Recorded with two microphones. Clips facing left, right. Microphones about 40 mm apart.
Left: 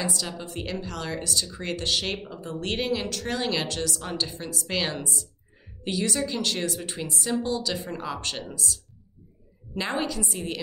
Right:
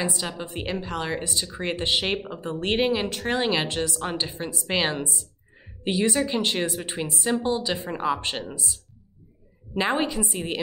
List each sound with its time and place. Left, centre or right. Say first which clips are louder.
0.0 s speech: right 2 dB; right
9.8 s speech: right 4 dB; right